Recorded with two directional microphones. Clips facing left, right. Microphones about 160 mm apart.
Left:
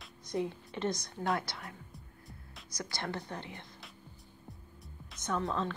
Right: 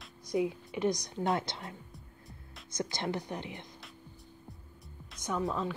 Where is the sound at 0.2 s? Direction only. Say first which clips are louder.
Right 4 dB; 10° right (ahead or behind).